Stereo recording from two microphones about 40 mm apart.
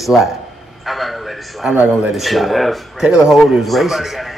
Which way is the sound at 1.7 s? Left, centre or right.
Right.